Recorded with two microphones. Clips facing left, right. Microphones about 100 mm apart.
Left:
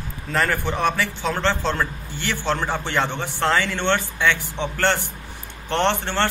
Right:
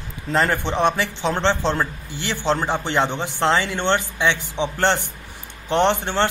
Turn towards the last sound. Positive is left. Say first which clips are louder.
# right 2 dB
turn(degrees=-15)  # may be behind; listen again after turning